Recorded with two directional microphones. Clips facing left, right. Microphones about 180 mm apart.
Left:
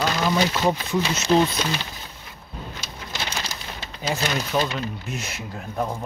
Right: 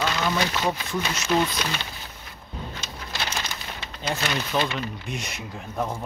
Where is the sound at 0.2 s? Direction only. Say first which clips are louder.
Left 3 dB; 15° left (ahead or behind).